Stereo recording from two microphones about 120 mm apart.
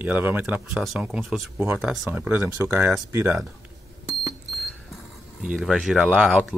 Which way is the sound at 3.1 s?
20° right (ahead or behind).